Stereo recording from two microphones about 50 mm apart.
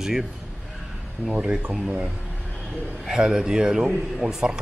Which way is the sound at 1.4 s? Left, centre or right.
Right.